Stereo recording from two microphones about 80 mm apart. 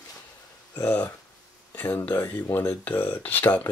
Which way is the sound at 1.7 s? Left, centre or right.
Left.